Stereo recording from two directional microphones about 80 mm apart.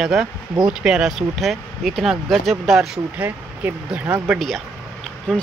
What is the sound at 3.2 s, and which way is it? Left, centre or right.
Speech, centre.